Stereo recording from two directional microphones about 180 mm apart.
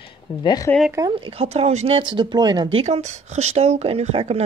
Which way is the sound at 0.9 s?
20° right (ahead or behind).